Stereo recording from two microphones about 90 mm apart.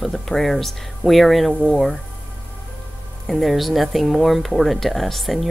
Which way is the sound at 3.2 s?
Centre (ahead or behind).